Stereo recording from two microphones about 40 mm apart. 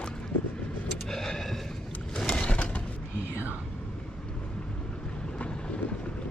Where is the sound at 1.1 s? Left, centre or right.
Centre.